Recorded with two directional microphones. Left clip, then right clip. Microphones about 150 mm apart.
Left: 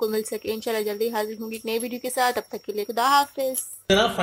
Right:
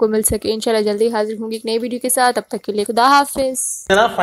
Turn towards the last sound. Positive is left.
turn(degrees=15)  # may be behind; listen again after turning